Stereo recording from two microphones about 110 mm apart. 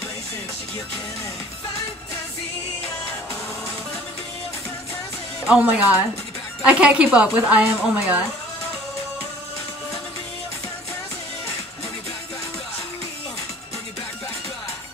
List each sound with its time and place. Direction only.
5.5 s speech: 15° right (ahead or behind)